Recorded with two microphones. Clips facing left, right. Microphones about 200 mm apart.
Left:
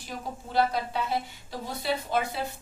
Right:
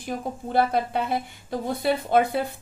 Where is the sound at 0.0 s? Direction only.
55° right (ahead or behind).